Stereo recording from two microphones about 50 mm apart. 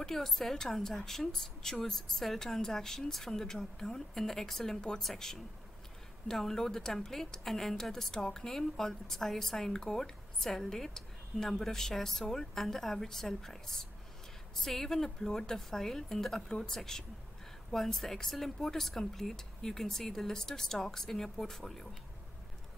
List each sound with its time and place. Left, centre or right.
0.0 s a woman's voice: centre